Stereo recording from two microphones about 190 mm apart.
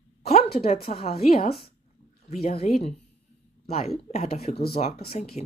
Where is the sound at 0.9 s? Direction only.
40° left (ahead or behind).